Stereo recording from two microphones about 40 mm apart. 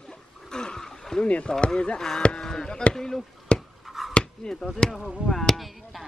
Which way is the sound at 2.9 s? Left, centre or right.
Centre.